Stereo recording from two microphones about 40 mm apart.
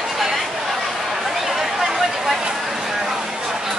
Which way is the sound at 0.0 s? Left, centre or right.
Centre.